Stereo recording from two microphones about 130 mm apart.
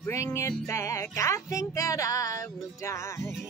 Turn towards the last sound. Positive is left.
turn(degrees=20)  # may be behind; listen again after turning